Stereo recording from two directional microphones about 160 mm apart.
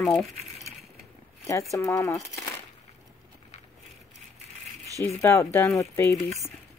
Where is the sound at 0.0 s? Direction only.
5° left (ahead or behind).